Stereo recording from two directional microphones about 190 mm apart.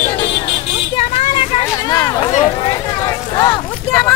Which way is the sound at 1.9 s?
20° left (ahead or behind).